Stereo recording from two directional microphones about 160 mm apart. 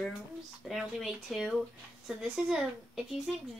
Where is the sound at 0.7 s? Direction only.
Centre (ahead or behind).